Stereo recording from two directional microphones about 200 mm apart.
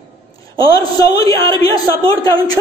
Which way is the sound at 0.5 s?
20° left (ahead or behind).